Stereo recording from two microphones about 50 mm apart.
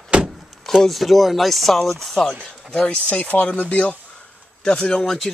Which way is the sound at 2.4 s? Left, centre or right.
Left.